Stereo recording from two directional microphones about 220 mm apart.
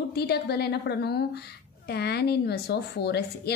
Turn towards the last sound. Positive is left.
turn(degrees=50)  # may be behind; listen again after turning